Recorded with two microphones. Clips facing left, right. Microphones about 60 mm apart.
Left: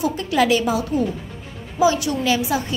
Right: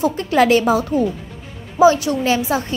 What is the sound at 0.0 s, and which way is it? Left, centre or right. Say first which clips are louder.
A woman's voice: right 4 dB; right.